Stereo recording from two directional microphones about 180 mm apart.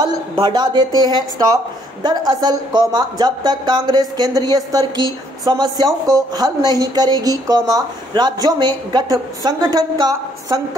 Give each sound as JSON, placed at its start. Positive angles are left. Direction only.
{"t": 0.0, "sound": "speech", "side_deg": -25}